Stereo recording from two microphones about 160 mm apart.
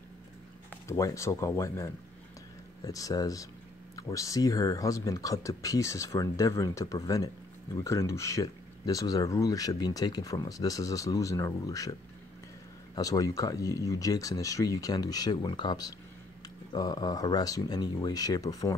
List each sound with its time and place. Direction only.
0.8 s speech: 20° left (ahead or behind)